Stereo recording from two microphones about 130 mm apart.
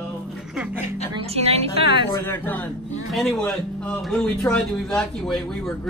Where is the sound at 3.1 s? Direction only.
Centre (ahead or behind).